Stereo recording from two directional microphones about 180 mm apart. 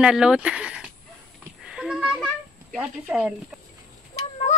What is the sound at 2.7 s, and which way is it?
Speech, 5° right (ahead or behind).